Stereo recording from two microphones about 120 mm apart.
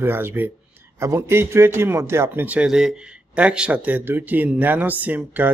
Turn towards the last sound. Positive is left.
turn(degrees=-15)  # may be behind; listen again after turning